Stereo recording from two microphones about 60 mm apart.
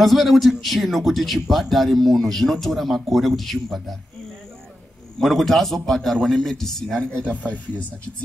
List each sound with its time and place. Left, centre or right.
0.0 s speech: centre
5.2 s speech: centre
7.0 s speech: centre